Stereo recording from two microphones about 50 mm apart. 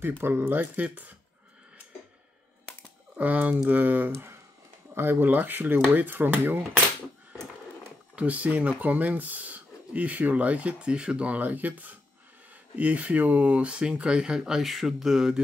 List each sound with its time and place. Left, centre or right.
0.2 s speech: right
3.2 s speech: right
4.1 s speech: right
4.9 s speech: right
8.2 s speech: right; by 15.4 s centre